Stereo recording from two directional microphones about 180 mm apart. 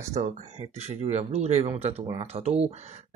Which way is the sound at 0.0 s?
40° right (ahead or behind).